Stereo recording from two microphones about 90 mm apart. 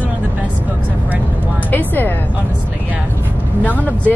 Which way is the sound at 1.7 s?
20° left (ahead or behind).